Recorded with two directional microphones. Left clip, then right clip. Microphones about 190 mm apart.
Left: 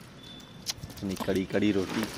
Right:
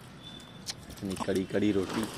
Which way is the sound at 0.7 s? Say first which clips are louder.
Left 4 dB; 10° left (ahead or behind).